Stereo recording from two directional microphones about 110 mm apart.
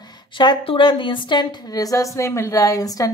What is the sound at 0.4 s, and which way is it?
A woman's voice, 45° left (ahead or behind).